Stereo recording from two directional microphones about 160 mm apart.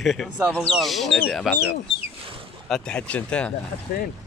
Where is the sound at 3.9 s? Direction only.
60° left (ahead or behind).